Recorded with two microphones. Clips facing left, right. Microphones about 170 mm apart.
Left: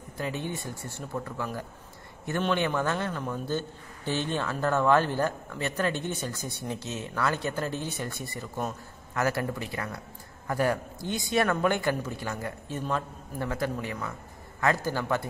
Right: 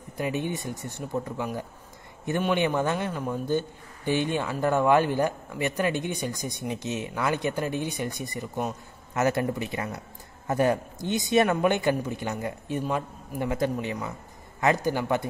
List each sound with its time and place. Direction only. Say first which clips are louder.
0.2 s a man's voice: right 4 dB; 15° right (ahead or behind)